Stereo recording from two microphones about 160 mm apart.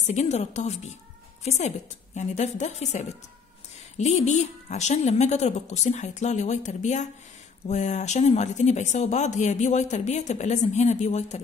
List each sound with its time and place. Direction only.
0.0 s a woman's voice: 45° left (ahead or behind)